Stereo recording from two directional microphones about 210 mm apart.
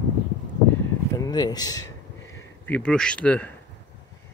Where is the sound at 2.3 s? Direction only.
10° left (ahead or behind).